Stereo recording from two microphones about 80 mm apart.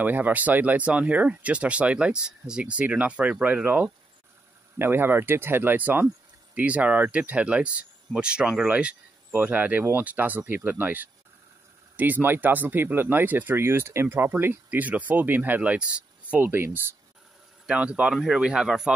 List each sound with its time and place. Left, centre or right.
0.0 s speech: right
16.3 s speech: right
17.6 s speech: centre